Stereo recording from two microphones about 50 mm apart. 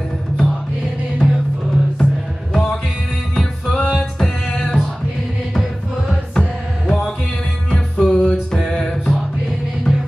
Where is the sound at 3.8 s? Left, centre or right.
Left.